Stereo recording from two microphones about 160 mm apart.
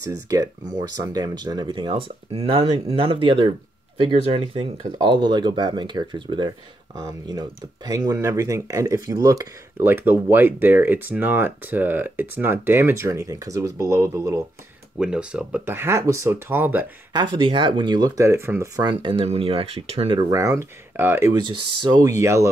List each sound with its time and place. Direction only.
0.0 s speech: 20° right (ahead or behind)
15.0 s speech: 5° right (ahead or behind)
17.1 s speech: 30° right (ahead or behind)
20.2 s speech: 20° right (ahead or behind)
21.4 s speech: 30° right (ahead or behind)